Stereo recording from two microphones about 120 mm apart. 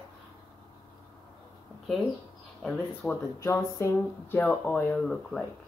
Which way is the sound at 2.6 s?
5° left (ahead or behind).